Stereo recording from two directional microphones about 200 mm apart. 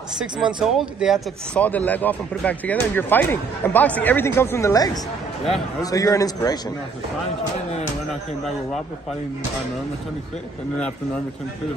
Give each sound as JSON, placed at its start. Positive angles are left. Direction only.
{"t": 0.6, "sound": "speech", "side_deg": 0}